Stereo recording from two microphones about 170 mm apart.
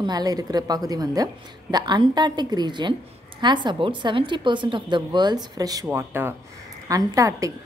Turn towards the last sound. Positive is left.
turn(degrees=-20)  # may be behind; listen again after turning